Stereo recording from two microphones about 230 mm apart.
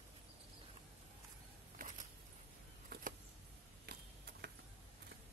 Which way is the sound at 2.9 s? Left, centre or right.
Right.